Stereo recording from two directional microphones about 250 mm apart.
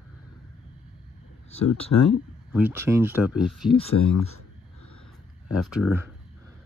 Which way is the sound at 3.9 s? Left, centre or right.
Left.